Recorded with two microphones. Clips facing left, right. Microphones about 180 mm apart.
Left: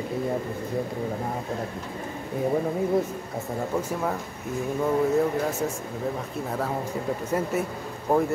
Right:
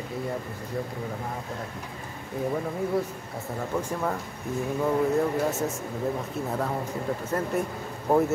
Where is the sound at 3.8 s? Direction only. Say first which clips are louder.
Right 1 dB; 5° left (ahead or behind).